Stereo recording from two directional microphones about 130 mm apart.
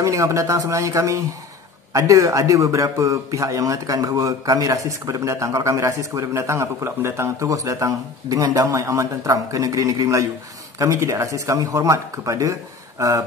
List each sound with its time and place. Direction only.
0.0 s a man's voice: 25° right (ahead or behind)